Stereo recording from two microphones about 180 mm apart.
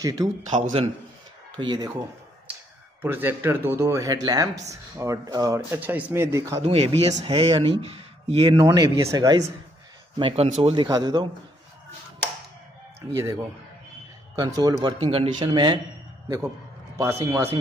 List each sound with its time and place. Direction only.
0.0 s a man's voice: 20° right (ahead or behind)
0.5 s speech: 40° right (ahead or behind)
1.6 s a man's voice: 25° right (ahead or behind)
3.0 s speech: 10° right (ahead or behind)
6.6 s speech: 35° right (ahead or behind)
8.5 s a man's voice: 20° right (ahead or behind)
10.1 s a man's voice: 30° right (ahead or behind)
13.1 s a man's voice: 15° right (ahead or behind)
17.0 s speech: 15° right (ahead or behind)